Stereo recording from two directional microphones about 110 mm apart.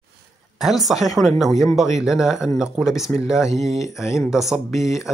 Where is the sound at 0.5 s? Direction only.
5° right (ahead or behind).